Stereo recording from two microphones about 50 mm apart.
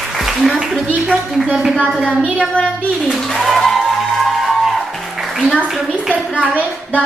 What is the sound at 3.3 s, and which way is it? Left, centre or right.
Music, centre.